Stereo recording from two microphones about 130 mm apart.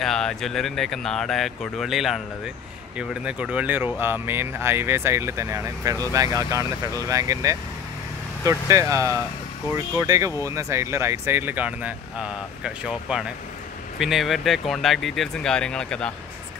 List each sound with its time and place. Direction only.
0.0 s speech: 5° left (ahead or behind)